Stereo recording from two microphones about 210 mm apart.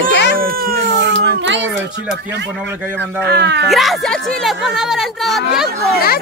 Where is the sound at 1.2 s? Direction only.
60° right (ahead or behind).